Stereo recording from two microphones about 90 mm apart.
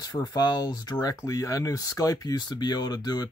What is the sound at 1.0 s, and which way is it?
Speech, 35° left (ahead or behind).